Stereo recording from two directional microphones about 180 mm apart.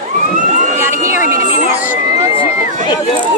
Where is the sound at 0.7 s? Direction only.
15° right (ahead or behind).